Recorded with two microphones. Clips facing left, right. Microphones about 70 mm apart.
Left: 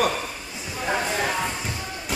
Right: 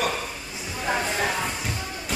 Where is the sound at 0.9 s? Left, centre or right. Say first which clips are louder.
Left 1 dB; centre.